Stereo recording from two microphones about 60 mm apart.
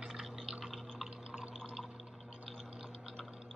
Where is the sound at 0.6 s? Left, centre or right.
Centre.